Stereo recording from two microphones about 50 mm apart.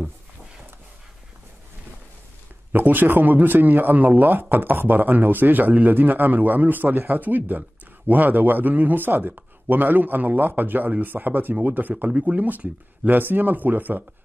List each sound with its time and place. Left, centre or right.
2.7 s speech: right